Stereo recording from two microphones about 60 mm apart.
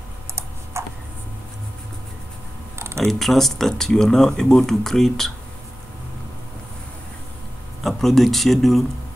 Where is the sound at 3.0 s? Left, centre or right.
Centre.